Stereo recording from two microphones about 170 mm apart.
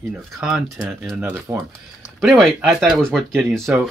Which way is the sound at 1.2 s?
15° right (ahead or behind).